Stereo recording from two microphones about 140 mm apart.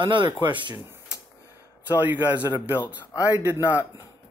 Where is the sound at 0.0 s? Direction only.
35° right (ahead or behind).